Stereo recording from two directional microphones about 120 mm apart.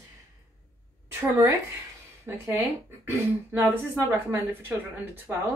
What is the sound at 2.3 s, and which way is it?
Speech, 20° right (ahead or behind).